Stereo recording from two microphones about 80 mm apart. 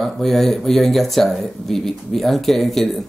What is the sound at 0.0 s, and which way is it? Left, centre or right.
Speech, centre.